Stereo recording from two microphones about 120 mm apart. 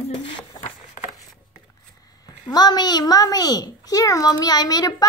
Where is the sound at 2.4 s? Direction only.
35° left (ahead or behind).